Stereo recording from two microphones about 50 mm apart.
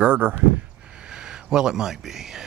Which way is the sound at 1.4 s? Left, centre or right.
Centre.